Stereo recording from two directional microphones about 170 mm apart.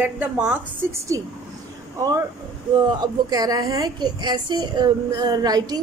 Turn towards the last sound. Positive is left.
turn(degrees=-25)  # may be behind; listen again after turning